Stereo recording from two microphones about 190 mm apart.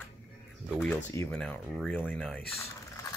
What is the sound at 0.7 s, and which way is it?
Speech, 10° left (ahead or behind).